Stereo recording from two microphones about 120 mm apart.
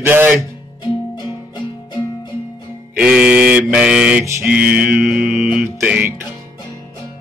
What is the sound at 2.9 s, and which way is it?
Mantra, 10° right (ahead or behind).